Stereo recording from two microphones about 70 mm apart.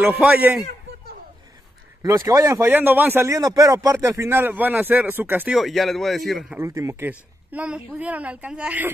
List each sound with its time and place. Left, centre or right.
0.2 s a woman's voice: right
2.0 s speech: right
2.7 s a woman's voice: right
3.3 s speech: right
4.0 s speech: right
4.3 s a woman's voice: right
5.5 s a man's voice: centre
6.6 s speech: right
7.1 s a woman's voice: centre